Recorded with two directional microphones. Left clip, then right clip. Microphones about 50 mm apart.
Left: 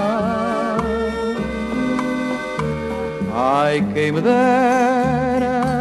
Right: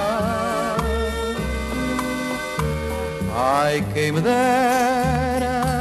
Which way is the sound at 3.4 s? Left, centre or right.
Centre.